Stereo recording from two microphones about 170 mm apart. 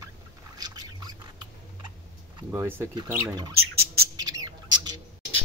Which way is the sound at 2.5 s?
15° right (ahead or behind).